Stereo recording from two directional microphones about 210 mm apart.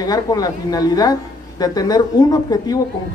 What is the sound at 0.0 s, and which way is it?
Speech, 20° left (ahead or behind).